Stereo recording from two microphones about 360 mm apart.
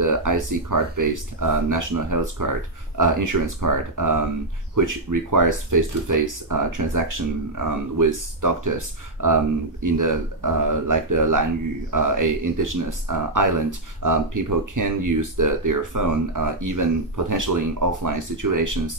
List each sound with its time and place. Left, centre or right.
0.0 s speech: right